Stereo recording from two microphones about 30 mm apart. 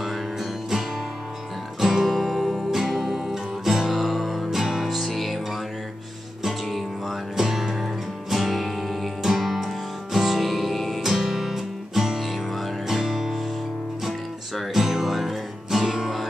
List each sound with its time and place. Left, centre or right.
0.0 s music: centre
2.0 s music: centre
2.7 s music: centre
4.0 s music: centre
6.7 s music: centre
14.7 s music: centre
15.8 s music: right